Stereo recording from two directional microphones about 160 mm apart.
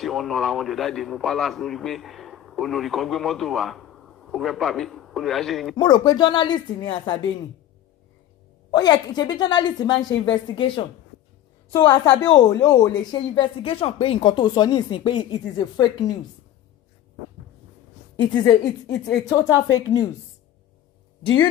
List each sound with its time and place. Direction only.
0.0 s a man's voice: centre (ahead or behind)
5.8 s speech: 25° left (ahead or behind)
8.7 s speech: 25° left (ahead or behind)
18.1 s speech: 25° left (ahead or behind)